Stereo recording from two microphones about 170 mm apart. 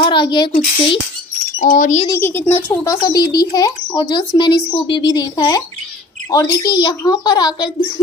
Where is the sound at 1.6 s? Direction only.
50° left (ahead or behind).